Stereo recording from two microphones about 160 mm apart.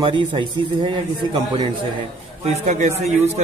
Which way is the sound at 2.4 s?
45° right (ahead or behind).